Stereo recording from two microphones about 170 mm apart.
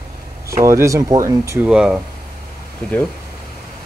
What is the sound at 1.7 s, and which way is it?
Speech, 5° right (ahead or behind).